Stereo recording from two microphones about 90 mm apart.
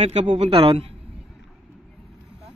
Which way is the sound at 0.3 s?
75° right (ahead or behind).